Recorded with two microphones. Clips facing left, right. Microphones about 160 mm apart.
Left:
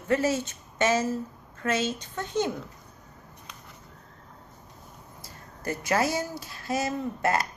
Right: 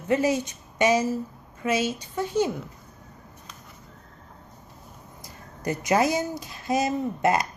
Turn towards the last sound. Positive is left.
turn(degrees=-20)  # may be behind; listen again after turning